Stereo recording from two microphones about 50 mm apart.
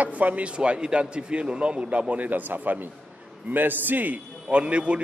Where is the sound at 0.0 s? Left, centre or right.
Right.